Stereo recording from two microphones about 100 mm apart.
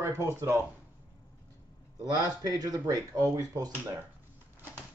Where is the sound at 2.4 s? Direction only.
40° right (ahead or behind).